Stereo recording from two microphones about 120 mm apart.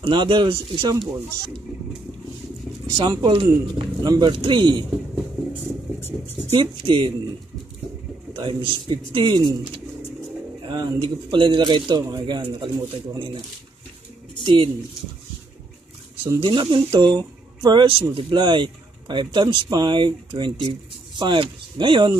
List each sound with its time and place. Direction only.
0.0 s a man's voice: 45° right (ahead or behind)
3.0 s speech: 35° right (ahead or behind)
4.0 s speech: 35° right (ahead or behind)
5.5 s a sound: 20° left (ahead or behind)
6.5 s a man's voice: 45° right (ahead or behind)
8.3 s a man's voice: 40° right (ahead or behind)
9.4 s speech: 30° right (ahead or behind)
14.4 s speech: 40° right (ahead or behind)
16.3 s a man's voice: 40° right (ahead or behind)